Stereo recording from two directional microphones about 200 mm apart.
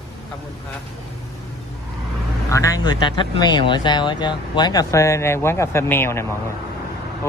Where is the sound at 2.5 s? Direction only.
15° left (ahead or behind).